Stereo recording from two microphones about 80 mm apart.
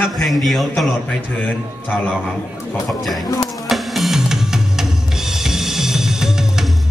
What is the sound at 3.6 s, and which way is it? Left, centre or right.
Drum kit, centre.